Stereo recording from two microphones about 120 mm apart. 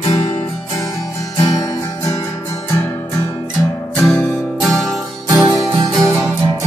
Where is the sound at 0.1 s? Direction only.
30° left (ahead or behind).